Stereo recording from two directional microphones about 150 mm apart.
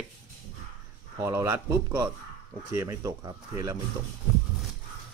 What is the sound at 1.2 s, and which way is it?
Speech, 20° right (ahead or behind).